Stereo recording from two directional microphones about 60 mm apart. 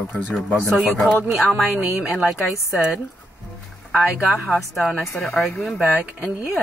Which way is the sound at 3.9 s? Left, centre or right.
Centre.